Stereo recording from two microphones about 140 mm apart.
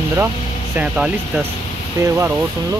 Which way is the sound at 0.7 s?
10° right (ahead or behind).